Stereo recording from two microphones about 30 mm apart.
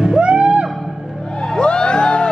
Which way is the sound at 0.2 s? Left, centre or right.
Right.